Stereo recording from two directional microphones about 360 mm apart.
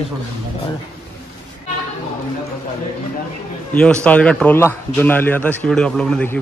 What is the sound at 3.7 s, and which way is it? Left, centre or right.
Speech, centre.